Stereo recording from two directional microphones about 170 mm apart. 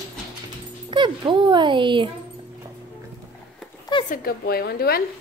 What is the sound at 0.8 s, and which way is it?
Speech, 30° right (ahead or behind).